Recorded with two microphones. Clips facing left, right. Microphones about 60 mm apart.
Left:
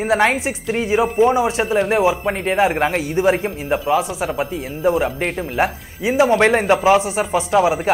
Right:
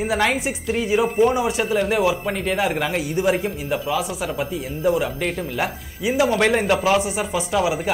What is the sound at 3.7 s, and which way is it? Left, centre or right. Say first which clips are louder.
Speech: left 5 dB; left.